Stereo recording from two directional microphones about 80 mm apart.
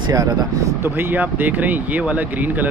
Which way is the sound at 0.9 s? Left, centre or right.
Right.